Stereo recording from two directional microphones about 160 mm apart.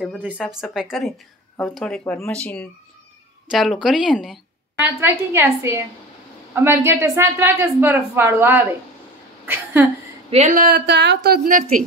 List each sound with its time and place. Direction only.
0.2 s a woman's voice: 5° right (ahead or behind)
10.3 s speech: 45° right (ahead or behind)
10.6 s a woman's voice: 85° right; by 11.8 s 60° right (ahead or behind)